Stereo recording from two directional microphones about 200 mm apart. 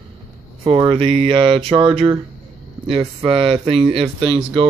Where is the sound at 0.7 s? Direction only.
30° right (ahead or behind).